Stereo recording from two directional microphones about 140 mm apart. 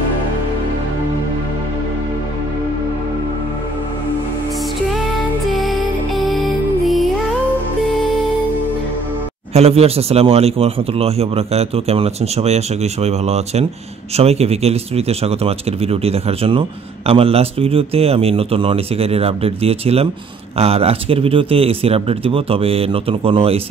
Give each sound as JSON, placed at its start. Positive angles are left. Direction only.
{"t": 5.5, "sound": "music", "side_deg": 0}
{"t": 9.5, "sound": "speech", "side_deg": -45}